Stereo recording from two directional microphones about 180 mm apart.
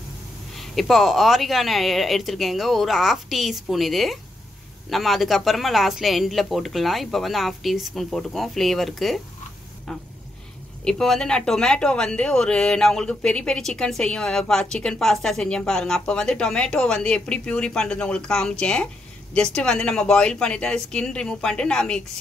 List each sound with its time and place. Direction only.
0.6 s speech: centre (ahead or behind)